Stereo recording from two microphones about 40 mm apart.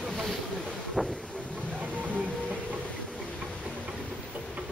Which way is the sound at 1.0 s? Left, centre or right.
Centre.